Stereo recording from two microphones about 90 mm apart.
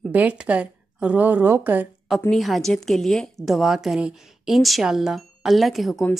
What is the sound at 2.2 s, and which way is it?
Speech, centre (ahead or behind).